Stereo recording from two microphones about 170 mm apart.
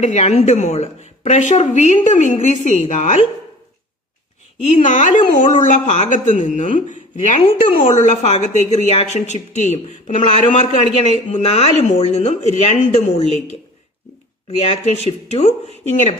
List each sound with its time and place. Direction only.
0.0 s a woman's voice: 40° left (ahead or behind)
4.6 s a woman's voice: 45° left (ahead or behind)
14.6 s a woman's voice: 40° left (ahead or behind)